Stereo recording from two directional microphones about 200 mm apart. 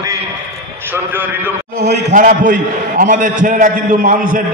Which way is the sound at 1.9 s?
40° right (ahead or behind).